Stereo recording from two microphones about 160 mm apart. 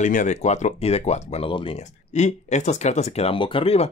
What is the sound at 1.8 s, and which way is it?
Speech, 45° left (ahead or behind).